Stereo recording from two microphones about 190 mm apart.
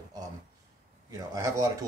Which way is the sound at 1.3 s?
20° right (ahead or behind).